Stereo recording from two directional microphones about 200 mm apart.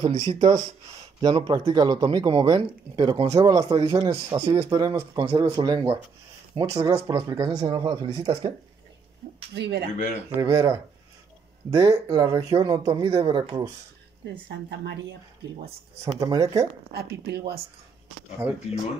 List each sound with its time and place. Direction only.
0.2 s speech: 20° right (ahead or behind)
5.2 s speech: 30° right (ahead or behind)
9.5 s speech: 55° right (ahead or behind)
10.3 s speech: 20° right (ahead or behind)
14.5 s speech: 55° right (ahead or behind)
16.0 s speech: 15° right (ahead or behind)
16.9 s speech: 55° right (ahead or behind)